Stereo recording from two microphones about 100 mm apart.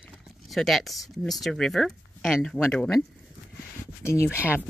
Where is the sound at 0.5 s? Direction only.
Centre (ahead or behind).